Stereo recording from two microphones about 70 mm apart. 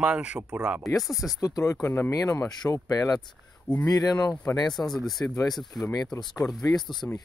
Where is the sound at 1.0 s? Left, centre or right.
Centre.